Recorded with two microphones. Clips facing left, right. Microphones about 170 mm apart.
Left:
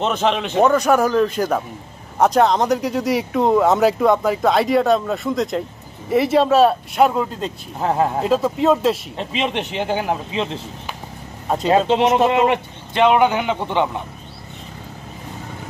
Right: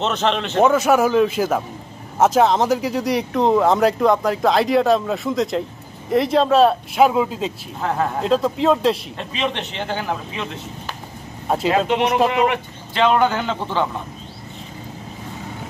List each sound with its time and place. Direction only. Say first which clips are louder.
0.0 s a man's voice: left 1 dB; 10° left (ahead or behind)
0.7 s speech: even; 5° right (ahead or behind)
7.8 s speech: left 3 dB; 30° left (ahead or behind)
8.2 s speech: left 1 dB; 5° left (ahead or behind)
9.5 s a man's voice: left 4 dB; 10° left (ahead or behind)
10.3 s speech: left 5 dB; 30° left (ahead or behind)
11.4 s speech: right 1 dB; 5° right (ahead or behind)
11.9 s a man's voice: left 2 dB; 20° left (ahead or behind)